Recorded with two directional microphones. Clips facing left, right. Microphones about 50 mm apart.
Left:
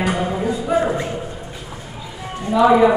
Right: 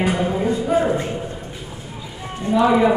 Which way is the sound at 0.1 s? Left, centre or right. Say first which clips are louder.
Right 1 dB; centre.